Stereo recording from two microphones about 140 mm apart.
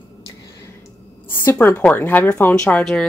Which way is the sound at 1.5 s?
20° left (ahead or behind).